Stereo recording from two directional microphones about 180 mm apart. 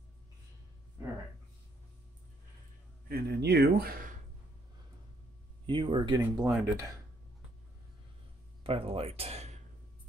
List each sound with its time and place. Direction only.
3.1 s speech: 60° right (ahead or behind)
5.7 s speech: 25° right (ahead or behind)
8.6 s speech: 30° right (ahead or behind)